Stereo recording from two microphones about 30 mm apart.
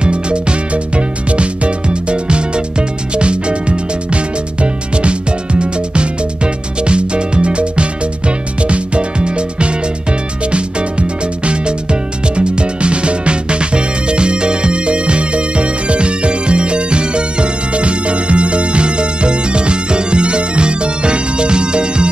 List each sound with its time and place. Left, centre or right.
0.0 s music: right